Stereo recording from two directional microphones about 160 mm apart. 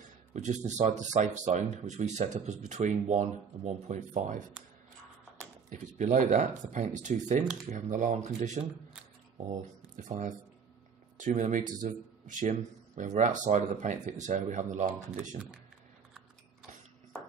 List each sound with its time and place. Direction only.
0.0 s speech: 50° right (ahead or behind)
5.7 s speech: 50° right (ahead or behind)